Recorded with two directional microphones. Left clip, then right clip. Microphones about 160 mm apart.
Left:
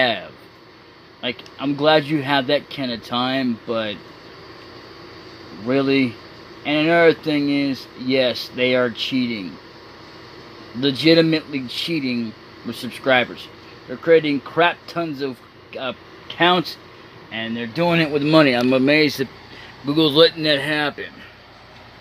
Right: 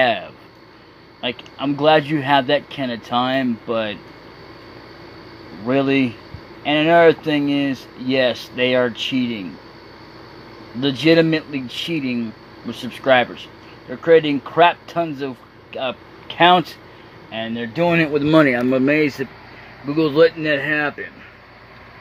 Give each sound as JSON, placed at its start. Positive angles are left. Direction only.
{"t": 0.0, "sound": "speech", "side_deg": 0}
{"t": 5.7, "sound": "speech", "side_deg": -5}
{"t": 10.8, "sound": "speech", "side_deg": 0}